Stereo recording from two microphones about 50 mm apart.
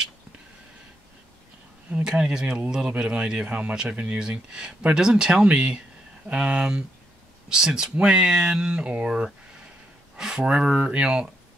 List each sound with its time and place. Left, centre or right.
1.9 s speech: right